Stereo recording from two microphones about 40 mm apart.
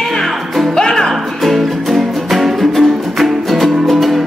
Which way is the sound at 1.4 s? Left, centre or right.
Centre.